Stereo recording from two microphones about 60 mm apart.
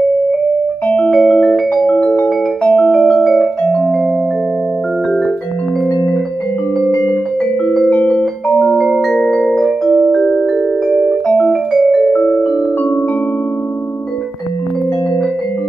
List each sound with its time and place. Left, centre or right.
0.8 s music: centre
7.9 s music: left
8.5 s music: centre
11.2 s music: left
11.7 s music: centre